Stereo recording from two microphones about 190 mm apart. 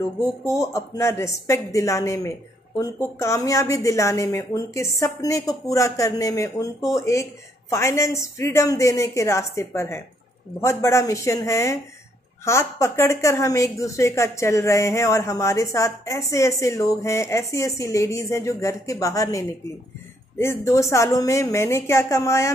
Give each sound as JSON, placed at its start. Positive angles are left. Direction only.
{"t": 0.6, "sound": "a woman's voice", "side_deg": 15}